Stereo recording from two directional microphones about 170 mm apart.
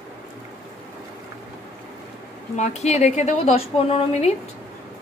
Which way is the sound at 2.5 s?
45° left (ahead or behind).